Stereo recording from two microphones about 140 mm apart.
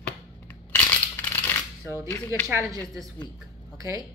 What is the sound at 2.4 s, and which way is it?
Speech, 25° right (ahead or behind).